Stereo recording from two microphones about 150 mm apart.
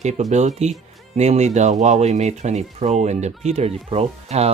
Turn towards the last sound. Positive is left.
turn(degrees=-45)  # may be behind; listen again after turning